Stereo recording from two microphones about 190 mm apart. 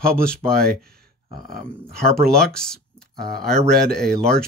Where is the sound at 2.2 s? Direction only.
5° left (ahead or behind).